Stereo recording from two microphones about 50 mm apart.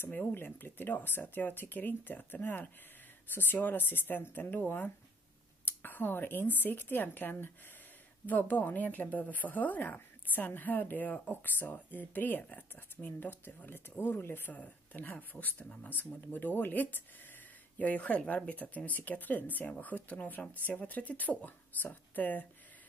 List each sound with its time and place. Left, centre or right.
0.1 s speech: left
14.6 s speech: left